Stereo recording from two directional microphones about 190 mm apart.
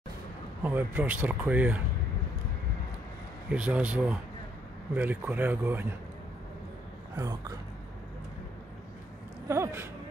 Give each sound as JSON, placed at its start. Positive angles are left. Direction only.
{"t": 0.7, "sound": "speech", "side_deg": -10}
{"t": 3.4, "sound": "speech", "side_deg": -5}
{"t": 7.2, "sound": "speech", "side_deg": -15}
{"t": 9.5, "sound": "speech", "side_deg": -15}